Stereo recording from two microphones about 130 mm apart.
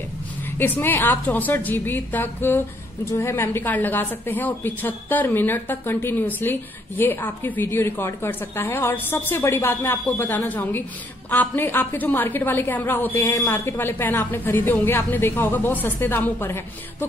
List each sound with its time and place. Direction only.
0.6 s a woman's voice: 15° left (ahead or behind)